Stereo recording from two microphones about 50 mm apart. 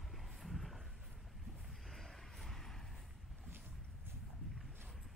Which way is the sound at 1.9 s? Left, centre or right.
Centre.